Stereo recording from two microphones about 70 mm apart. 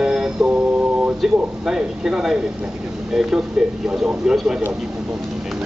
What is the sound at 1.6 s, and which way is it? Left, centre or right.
Speech, centre.